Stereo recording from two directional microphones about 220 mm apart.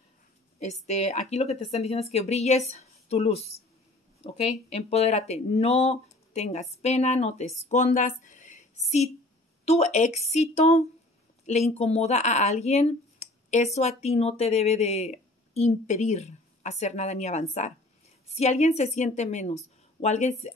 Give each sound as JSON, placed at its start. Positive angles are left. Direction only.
{"t": 0.8, "sound": "a woman's voice", "side_deg": 30}